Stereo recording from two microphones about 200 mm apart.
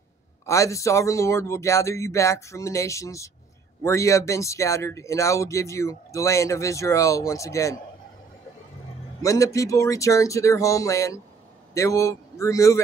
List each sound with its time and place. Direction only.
0.5 s speech: 15° left (ahead or behind)
9.2 s speech: 15° left (ahead or behind)